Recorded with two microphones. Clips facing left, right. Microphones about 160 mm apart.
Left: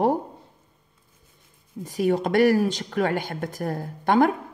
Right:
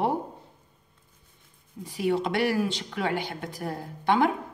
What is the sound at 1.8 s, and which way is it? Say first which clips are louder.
Speech: left 3 dB; 45° left (ahead or behind).